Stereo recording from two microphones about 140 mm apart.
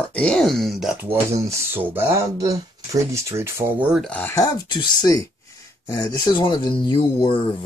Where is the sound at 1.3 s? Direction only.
20° right (ahead or behind).